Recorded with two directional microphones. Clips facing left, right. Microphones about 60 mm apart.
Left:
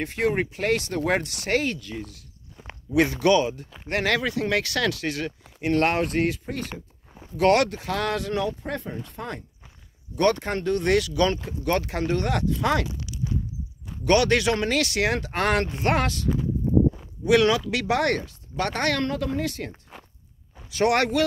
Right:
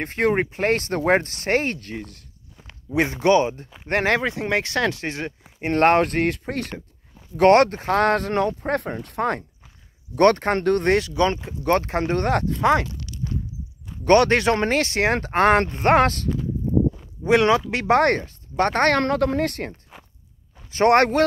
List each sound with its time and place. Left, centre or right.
0.0 s speech: right
2.6 s walk: centre
3.0 s speech: right
7.3 s speech: right
8.7 s speech: right
10.9 s speech: right
12.8 s a sound: centre
14.0 s speech: right
17.2 s speech: right
19.9 s walk: centre
20.7 s speech: right